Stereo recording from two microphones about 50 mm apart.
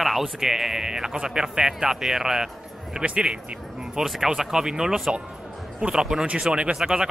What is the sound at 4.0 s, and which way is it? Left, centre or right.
Speech, centre.